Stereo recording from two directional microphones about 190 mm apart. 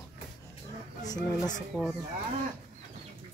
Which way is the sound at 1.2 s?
40° left (ahead or behind).